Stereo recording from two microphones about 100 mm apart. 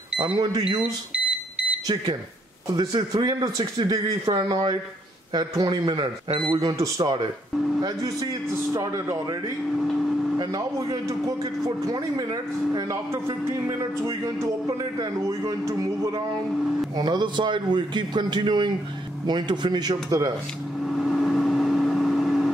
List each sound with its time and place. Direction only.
0.4 s a man's voice: 40° right (ahead or behind)
2.7 s a man's voice: 40° right (ahead or behind)
6.3 s speech: 65° right (ahead or behind)
6.6 s a man's voice: 40° right (ahead or behind)
10.4 s a man's voice: 40° right (ahead or behind)
16.9 s a man's voice: 45° right (ahead or behind)
20.9 s vehicle: centre (ahead or behind)